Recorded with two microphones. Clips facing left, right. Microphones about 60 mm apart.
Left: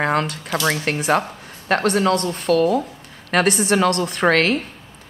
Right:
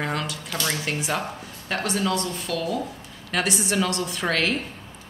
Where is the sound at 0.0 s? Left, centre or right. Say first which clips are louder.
Left 8 dB; left.